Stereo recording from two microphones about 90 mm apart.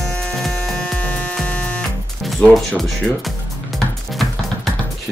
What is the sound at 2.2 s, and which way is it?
Speech, centre (ahead or behind).